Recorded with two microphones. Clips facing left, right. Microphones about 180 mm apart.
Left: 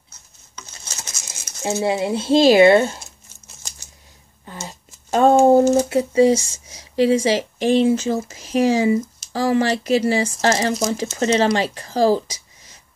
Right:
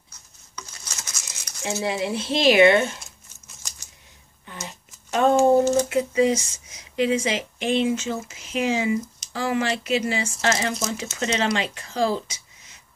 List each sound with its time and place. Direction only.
0.6 s patter: 25° left (ahead or behind)
1.6 s speech: 40° left (ahead or behind)
1.9 s speech: 25° left (ahead or behind)
4.5 s speech: 35° left (ahead or behind)